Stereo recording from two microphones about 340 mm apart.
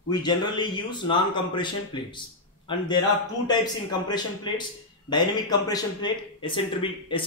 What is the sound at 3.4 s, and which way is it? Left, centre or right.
A man's voice, centre.